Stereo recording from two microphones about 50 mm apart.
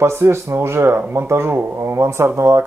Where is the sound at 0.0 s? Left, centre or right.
Right.